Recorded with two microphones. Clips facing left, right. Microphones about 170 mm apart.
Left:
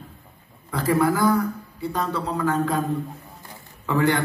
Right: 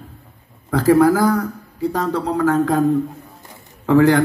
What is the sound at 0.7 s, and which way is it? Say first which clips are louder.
A man's voice: right 8 dB; 85° right.